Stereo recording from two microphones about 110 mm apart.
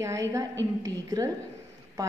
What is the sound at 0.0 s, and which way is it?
A woman's voice, 30° right (ahead or behind).